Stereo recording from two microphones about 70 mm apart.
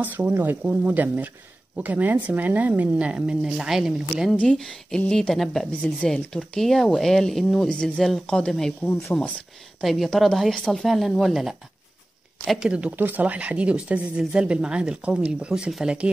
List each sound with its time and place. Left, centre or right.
0.0 s speech: right; by 3.9 s centre
4.4 s speech: centre
9.1 s speech: left
9.8 s speech: centre
12.5 s speech: centre
12.9 s speech: right